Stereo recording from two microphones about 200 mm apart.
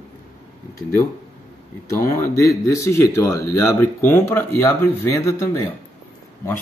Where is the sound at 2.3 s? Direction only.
15° left (ahead or behind).